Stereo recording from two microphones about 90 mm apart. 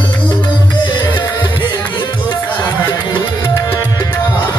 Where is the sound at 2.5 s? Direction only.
25° left (ahead or behind).